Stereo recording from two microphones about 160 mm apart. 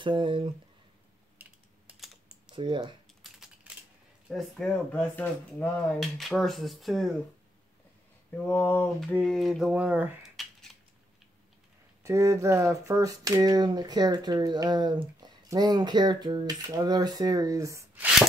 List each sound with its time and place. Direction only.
0.0 s speech: 30° right (ahead or behind)
1.4 s typing: 10° right (ahead or behind)
2.5 s speech: 30° right (ahead or behind)
3.3 s typing: 5° right (ahead or behind)
4.3 s speech: centre (ahead or behind)
8.5 s speech: 10° left (ahead or behind); by 10.3 s 10° right (ahead or behind)
12.0 s speech: 20° right (ahead or behind)